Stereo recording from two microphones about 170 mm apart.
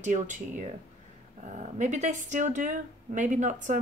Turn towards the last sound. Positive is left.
turn(degrees=-45)  # may be behind; listen again after turning